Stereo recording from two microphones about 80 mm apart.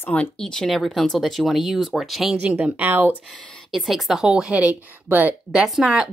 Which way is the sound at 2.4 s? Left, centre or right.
Centre.